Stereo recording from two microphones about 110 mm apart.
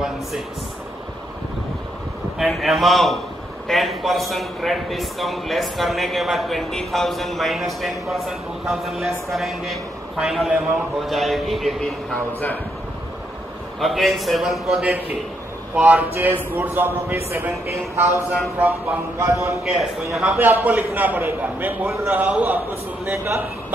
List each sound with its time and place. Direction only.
2.3 s a man's voice: centre (ahead or behind)
13.7 s a man's voice: centre (ahead or behind); by 18.0 s 20° right (ahead or behind)
19.1 s a man's voice: 30° right (ahead or behind)
19.6 s a man's voice: 5° right (ahead or behind)
20.6 s a man's voice: 15° right (ahead or behind)